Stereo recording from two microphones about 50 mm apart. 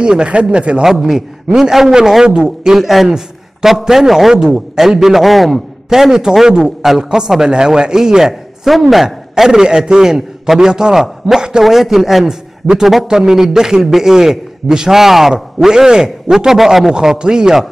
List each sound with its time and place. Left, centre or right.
0.0 s speech: centre
1.0 s a man's voice: centre